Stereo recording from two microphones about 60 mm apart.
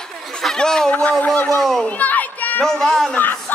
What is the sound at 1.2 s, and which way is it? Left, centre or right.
Speech, left.